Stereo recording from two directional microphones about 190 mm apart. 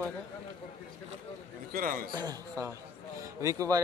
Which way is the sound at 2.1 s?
20° right (ahead or behind).